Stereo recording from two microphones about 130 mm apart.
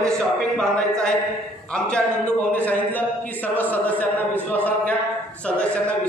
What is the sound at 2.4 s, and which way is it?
Speech, 10° left (ahead or behind).